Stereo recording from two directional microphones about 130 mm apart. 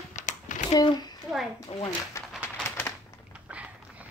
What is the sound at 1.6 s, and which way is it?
Speech, 50° left (ahead or behind).